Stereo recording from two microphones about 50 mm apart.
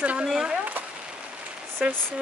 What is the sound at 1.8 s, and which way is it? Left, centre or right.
Speech, centre.